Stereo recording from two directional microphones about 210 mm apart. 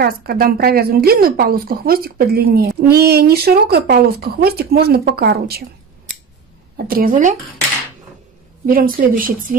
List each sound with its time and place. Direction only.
0.0 s a woman's voice: 45° right (ahead or behind)
6.9 s speech: 40° right (ahead or behind)
8.6 s a woman's voice: 40° right (ahead or behind)